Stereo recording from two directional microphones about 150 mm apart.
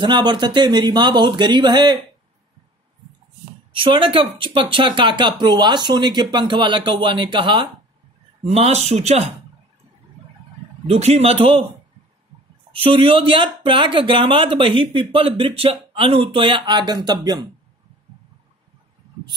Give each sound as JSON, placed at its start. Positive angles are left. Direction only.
{"t": 0.0, "sound": "speech", "side_deg": -30}
{"t": 3.7, "sound": "speech", "side_deg": -35}
{"t": 8.5, "sound": "speech", "side_deg": -45}
{"t": 10.9, "sound": "speech", "side_deg": -45}
{"t": 12.8, "sound": "speech", "side_deg": -40}